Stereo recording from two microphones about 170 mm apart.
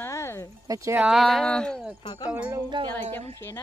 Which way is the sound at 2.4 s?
25° right (ahead or behind).